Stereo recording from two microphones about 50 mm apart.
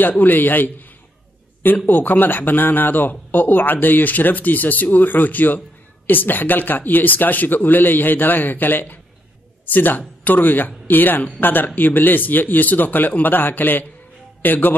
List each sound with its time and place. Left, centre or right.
0.2 s speech: left
1.9 s speech: left